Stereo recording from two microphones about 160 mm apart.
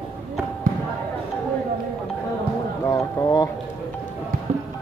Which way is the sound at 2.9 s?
25° left (ahead or behind).